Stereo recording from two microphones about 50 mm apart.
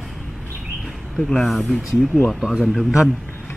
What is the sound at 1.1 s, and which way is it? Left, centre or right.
Speech, centre.